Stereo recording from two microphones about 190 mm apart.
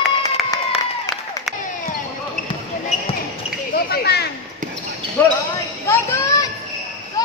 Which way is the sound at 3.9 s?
55° left (ahead or behind).